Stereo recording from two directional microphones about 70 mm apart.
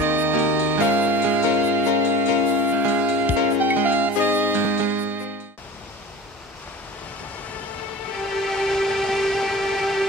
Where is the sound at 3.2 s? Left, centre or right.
Right.